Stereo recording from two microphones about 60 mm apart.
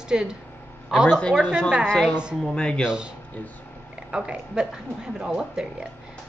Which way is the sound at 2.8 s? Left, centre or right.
Centre.